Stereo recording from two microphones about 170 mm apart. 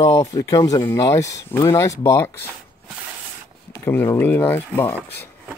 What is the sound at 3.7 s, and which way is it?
Speech, 15° left (ahead or behind).